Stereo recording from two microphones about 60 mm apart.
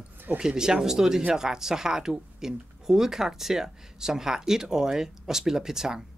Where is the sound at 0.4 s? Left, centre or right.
Centre.